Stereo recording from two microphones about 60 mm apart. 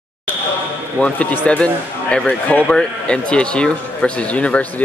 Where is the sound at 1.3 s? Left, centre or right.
Left.